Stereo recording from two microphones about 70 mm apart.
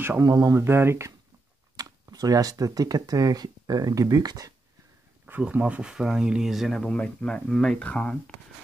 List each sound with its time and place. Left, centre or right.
0.2 s speech: right
0.6 s speech: right
1.8 s speech: right
5.4 s speech: centre
7.0 s speech: centre